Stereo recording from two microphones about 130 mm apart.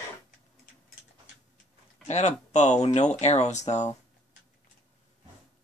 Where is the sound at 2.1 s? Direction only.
60° left (ahead or behind).